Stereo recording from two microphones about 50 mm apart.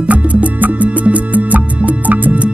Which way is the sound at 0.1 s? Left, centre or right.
Right.